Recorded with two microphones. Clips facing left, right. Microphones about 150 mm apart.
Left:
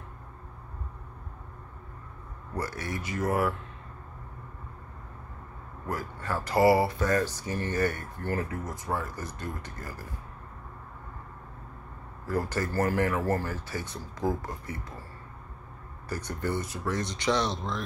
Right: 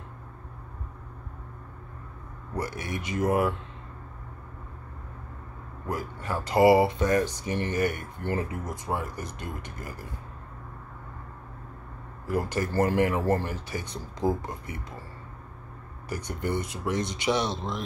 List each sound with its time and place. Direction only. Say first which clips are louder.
2.5 s speech: right 1 dB; 15° right (ahead or behind)
5.9 s speech: right 1 dB; 15° right (ahead or behind)
12.3 s speech: right 2 dB; 15° right (ahead or behind)
16.1 s speech: right 1 dB; 15° right (ahead or behind)